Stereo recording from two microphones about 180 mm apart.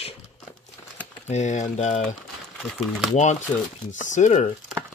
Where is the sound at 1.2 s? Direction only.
40° left (ahead or behind).